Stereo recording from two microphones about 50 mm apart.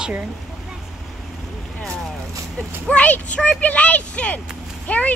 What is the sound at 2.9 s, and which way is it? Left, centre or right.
Speech, left.